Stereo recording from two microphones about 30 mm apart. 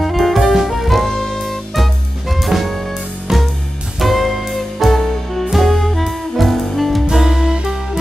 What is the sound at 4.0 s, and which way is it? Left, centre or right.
Music, centre.